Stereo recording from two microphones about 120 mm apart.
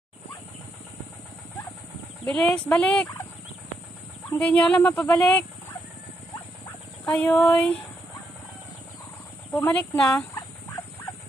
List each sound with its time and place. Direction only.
2.2 s speech: 5° left (ahead or behind)
4.3 s speech: 10° left (ahead or behind)
7.1 s speech: 10° left (ahead or behind)
9.5 s speech: 15° left (ahead or behind)
10.3 s dog: 30° left (ahead or behind)